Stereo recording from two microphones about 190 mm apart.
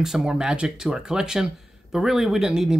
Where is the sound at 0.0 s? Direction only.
Centre (ahead or behind).